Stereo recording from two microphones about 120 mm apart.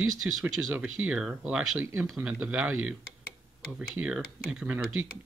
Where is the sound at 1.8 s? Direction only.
20° right (ahead or behind).